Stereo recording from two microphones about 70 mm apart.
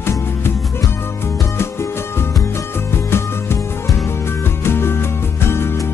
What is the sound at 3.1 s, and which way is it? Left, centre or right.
Music, left.